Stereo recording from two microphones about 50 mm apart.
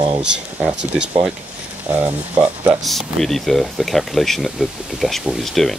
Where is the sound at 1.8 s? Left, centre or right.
Right.